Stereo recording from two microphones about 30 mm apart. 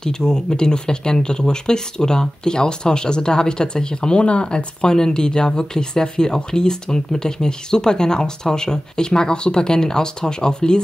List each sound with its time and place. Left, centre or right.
0.0 s speech: left
4.9 s speech: left